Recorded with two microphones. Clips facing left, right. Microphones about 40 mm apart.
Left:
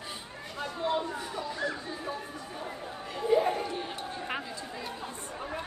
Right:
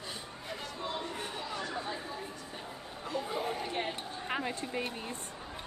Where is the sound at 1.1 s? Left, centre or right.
Right.